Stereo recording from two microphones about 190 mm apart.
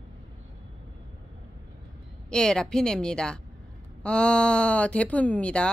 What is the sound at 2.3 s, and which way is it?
Speech, 5° left (ahead or behind).